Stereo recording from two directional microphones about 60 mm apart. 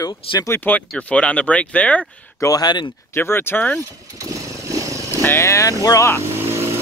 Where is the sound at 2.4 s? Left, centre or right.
Left.